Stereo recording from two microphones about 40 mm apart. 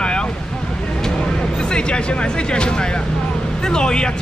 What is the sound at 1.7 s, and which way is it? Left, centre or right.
Speech, left.